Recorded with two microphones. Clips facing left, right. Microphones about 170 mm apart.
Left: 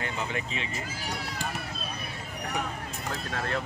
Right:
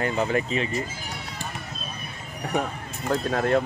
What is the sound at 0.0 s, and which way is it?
Speech, 40° right (ahead or behind).